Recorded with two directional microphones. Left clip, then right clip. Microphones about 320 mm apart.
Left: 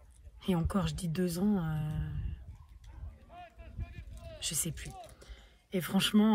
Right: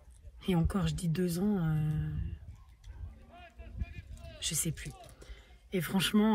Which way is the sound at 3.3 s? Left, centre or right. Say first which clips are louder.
Left 2 dB; centre.